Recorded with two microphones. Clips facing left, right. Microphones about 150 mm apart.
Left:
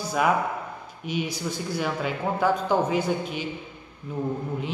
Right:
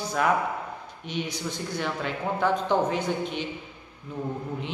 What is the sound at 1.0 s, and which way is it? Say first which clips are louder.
Speech: left 3 dB; 5° left (ahead or behind).